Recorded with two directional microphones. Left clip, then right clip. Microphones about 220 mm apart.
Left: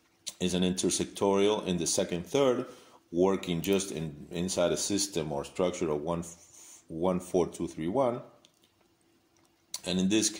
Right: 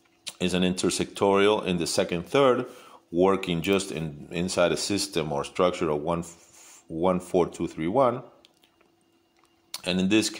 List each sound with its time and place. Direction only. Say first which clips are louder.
0.2 s speech: right 4 dB; 15° right (ahead or behind)
9.7 s speech: right 5 dB; 15° right (ahead or behind)